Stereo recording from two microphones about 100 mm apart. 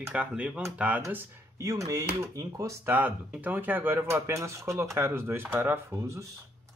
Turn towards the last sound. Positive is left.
turn(degrees=-30)  # may be behind; listen again after turning